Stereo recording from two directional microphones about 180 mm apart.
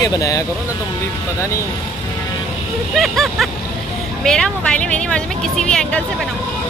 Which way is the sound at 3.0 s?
Centre (ahead or behind).